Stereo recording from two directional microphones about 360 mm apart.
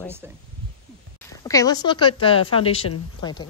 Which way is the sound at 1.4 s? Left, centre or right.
Centre.